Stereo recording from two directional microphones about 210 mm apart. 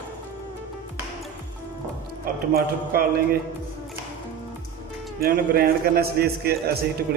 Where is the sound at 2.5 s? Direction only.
45° right (ahead or behind).